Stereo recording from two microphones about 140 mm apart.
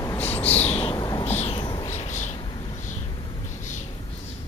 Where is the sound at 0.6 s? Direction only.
45° left (ahead or behind).